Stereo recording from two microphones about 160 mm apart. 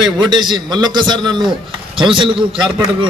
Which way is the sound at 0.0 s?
30° right (ahead or behind).